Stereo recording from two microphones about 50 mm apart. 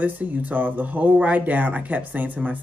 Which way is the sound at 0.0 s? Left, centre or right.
Right.